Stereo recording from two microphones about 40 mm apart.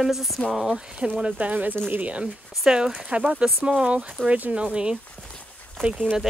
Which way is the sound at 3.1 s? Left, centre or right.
Right.